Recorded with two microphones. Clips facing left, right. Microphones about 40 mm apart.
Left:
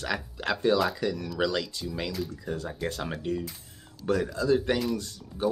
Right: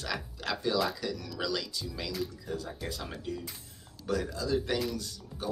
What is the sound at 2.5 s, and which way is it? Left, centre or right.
Speech, centre.